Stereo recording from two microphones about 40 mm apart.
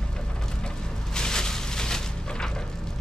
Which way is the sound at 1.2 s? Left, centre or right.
Centre.